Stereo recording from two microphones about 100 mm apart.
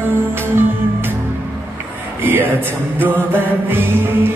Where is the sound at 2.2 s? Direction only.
20° right (ahead or behind).